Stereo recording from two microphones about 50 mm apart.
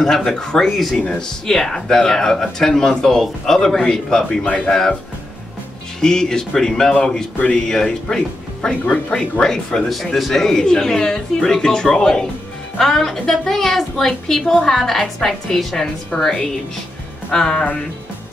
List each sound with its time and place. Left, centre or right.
0.0 s speech: centre
4.5 s speech: left
5.9 s speech: centre
9.8 s speech: centre